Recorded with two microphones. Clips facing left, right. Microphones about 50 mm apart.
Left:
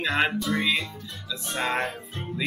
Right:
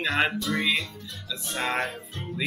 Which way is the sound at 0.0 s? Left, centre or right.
Centre.